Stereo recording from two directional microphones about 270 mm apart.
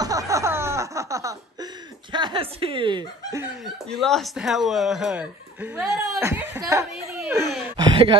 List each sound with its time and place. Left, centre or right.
0.0 s chuckle: centre
2.1 s a sound: centre
4.0 s speech: centre